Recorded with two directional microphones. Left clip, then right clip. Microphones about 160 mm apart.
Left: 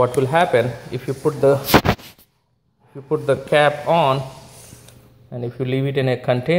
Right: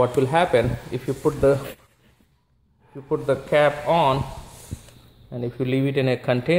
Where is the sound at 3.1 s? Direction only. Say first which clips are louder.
Left 4 dB; 20° left (ahead or behind).